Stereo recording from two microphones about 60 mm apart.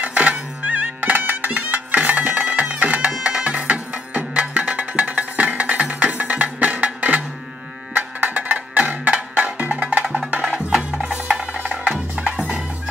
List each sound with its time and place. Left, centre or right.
0.0 s music: right
8.4 s music: right
10.0 s music: centre
11.5 s music: right